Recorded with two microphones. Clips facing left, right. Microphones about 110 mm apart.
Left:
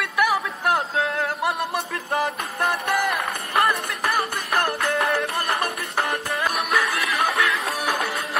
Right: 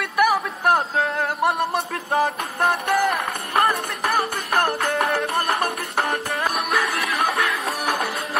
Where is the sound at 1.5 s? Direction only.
30° right (ahead or behind).